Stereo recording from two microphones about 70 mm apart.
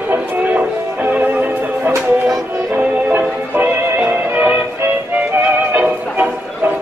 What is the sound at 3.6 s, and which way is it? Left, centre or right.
Music, right.